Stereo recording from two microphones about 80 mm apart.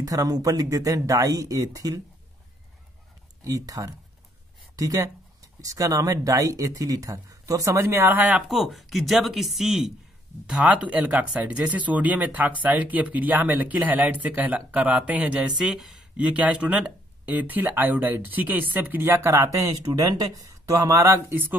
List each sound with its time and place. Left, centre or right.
0.0 s speech: right
3.4 s speech: right
7.7 s speech: right
8.4 s speech: centre
15.5 s speech: centre
16.2 s speech: centre; by 21.4 s right